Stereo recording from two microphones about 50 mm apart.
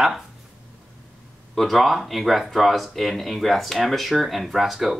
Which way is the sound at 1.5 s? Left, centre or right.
Centre.